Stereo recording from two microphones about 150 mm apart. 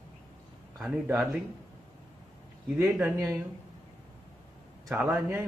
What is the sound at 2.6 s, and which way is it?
Speech, 10° right (ahead or behind).